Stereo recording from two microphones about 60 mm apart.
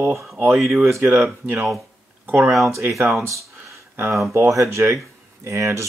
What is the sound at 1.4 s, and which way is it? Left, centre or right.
Speech, right.